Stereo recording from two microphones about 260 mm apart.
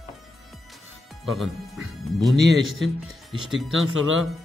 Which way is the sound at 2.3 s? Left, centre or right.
Right.